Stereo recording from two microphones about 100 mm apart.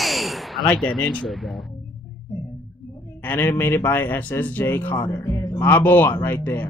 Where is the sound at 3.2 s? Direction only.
20° left (ahead or behind).